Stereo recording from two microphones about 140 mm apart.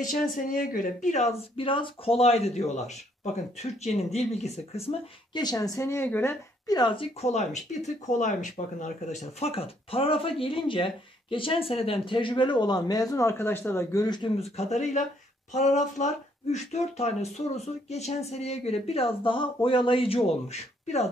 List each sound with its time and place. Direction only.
0.0 s speech: 80° left; by 2.8 s 50° left (ahead or behind)
3.8 s speech: 50° left (ahead or behind)
5.3 s speech: 30° left (ahead or behind)
6.7 s speech: 35° left (ahead or behind)
7.2 s speech: 50° left (ahead or behind); by 14.0 s 15° left (ahead or behind)
14.0 s speech: 30° left (ahead or behind)
14.6 s speech: 55° left (ahead or behind)